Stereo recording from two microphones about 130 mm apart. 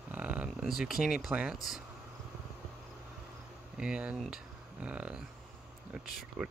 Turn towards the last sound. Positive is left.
turn(degrees=-5)  # may be behind; listen again after turning